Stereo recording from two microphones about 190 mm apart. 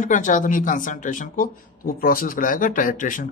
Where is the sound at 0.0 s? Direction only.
40° left (ahead or behind).